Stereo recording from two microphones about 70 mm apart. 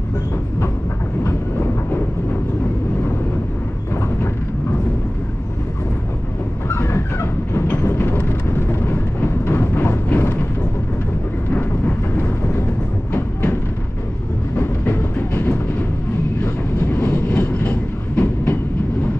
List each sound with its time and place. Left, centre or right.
1.2 s train: left
3.9 s vehicle: left
6.7 s train: left
11.5 s vehicle: left
13.1 s a sound: left
14.6 s music: left
16.8 s train: left